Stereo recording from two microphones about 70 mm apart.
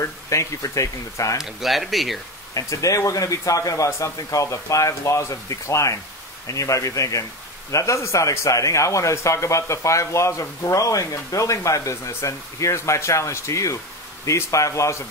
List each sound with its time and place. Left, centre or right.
0.0 s speech: left
1.4 s speech: centre
2.5 s speech: left